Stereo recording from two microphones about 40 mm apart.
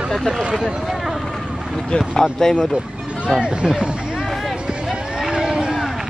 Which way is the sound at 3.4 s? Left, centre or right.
Right.